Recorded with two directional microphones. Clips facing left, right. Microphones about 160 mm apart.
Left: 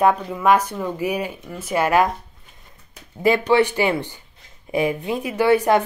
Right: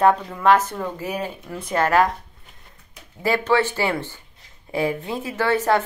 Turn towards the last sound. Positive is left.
turn(degrees=15)  # may be behind; listen again after turning